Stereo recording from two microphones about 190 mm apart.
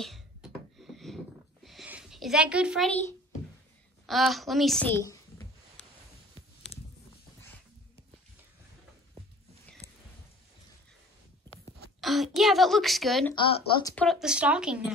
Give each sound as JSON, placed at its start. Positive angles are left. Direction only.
{"t": 0.0, "sound": "a sound", "side_deg": 0}
{"t": 4.0, "sound": "speech", "side_deg": 0}
{"t": 6.7, "sound": "a sound", "side_deg": 30}
{"t": 12.0, "sound": "speech", "side_deg": 0}
{"t": 13.3, "sound": "speech", "side_deg": 25}
{"t": 13.9, "sound": "speech", "side_deg": 0}